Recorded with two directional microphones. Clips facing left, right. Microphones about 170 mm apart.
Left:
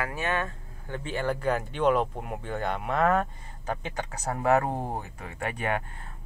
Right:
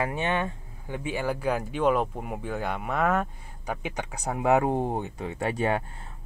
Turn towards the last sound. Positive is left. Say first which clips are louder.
# right 4 dB
turn(degrees=-30)  # may be behind; listen again after turning